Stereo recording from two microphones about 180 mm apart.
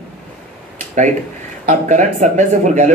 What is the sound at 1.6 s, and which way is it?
Speech, 40° right (ahead or behind).